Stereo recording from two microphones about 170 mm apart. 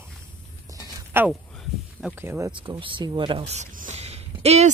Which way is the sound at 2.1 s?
15° right (ahead or behind).